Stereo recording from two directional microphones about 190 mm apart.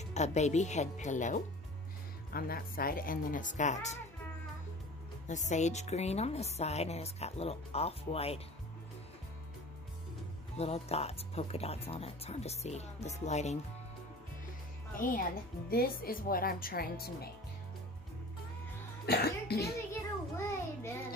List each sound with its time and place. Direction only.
0.0 s speech: 35° left (ahead or behind)
2.3 s speech: 55° left (ahead or behind); by 4.0 s 40° left (ahead or behind)
5.5 s speech: 35° left (ahead or behind)
10.6 s speech: 35° left (ahead or behind)
15.7 s speech: 50° left (ahead or behind)
19.0 s speech: 55° left (ahead or behind)
19.9 s child singing: 15° left (ahead or behind)